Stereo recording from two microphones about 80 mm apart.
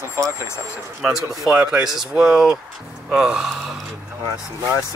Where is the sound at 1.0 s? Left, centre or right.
Centre.